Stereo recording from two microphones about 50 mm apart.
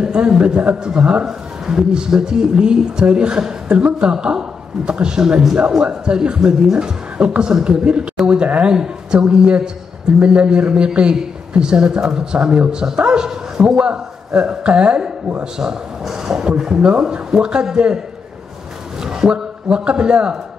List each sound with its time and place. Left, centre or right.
0.0 s speech: centre
8.7 s speech: centre